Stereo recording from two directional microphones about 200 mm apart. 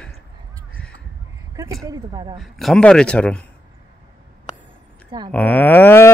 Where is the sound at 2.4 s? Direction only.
Centre (ahead or behind).